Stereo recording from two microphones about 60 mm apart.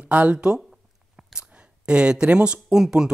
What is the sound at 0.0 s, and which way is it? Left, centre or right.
Speech, right.